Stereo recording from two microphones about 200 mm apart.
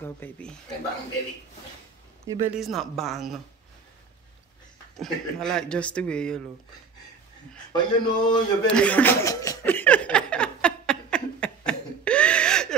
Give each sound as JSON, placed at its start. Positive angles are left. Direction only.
{"t": 0.0, "sound": "speech", "side_deg": 5}
{"t": 2.2, "sound": "speech", "side_deg": -10}
{"t": 2.6, "sound": "speech", "side_deg": 0}
{"t": 4.9, "sound": "speech", "side_deg": 0}
{"t": 7.7, "sound": "speech", "side_deg": 20}
{"t": 8.6, "sound": "chuckle", "side_deg": 5}